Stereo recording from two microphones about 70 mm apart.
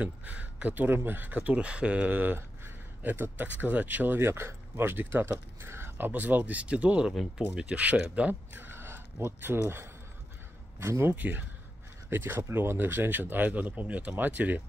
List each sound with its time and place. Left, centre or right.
0.0 s speech: right
11.1 s speech: right